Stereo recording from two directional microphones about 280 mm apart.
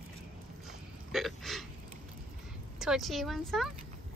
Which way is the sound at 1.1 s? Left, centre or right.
Centre.